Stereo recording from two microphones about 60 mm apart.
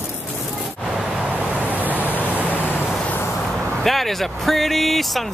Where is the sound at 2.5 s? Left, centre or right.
Left.